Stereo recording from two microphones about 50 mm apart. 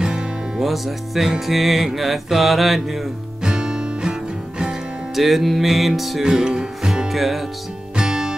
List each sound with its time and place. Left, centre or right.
0.0 s music: centre
0.7 s music: centre
3.4 s music: centre
5.1 s music: centre
6.2 s music: centre
8.0 s music: centre